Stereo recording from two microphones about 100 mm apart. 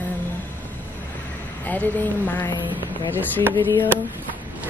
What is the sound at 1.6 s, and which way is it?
Speech, 15° left (ahead or behind).